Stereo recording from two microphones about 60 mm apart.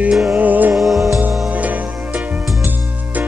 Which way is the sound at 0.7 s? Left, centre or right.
Centre.